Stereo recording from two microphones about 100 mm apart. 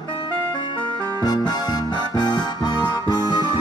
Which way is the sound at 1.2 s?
45° left (ahead or behind).